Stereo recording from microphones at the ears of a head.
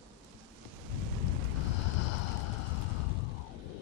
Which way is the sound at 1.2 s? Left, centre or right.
Left.